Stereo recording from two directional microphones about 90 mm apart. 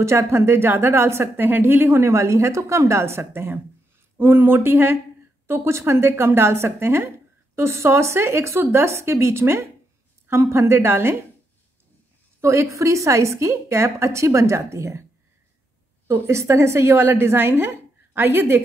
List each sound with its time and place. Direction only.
0.0 s a woman's voice: 30° right (ahead or behind)
12.4 s a woman's voice: 30° right (ahead or behind)
16.1 s a woman's voice: 30° right (ahead or behind)